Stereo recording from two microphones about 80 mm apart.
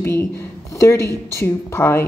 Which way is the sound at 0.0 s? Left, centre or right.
Left.